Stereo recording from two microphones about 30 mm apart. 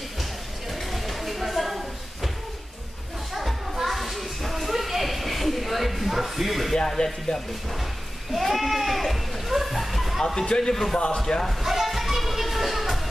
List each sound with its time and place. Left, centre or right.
0.2 s a sound: centre
3.7 s a sound: centre
7.0 s speech: left
8.4 s goat: centre
10.2 s a man's voice: left
10.7 s a man's voice: centre
11.1 s a man's voice: left
11.6 s children playing: centre